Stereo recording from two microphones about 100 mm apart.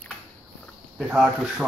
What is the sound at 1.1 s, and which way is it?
Speech, 10° right (ahead or behind).